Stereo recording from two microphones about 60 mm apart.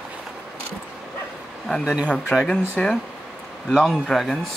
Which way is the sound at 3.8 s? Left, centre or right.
Centre.